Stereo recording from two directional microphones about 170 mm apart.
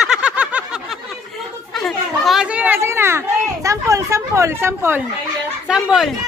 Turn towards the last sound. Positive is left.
turn(degrees=-5)  # may be behind; listen again after turning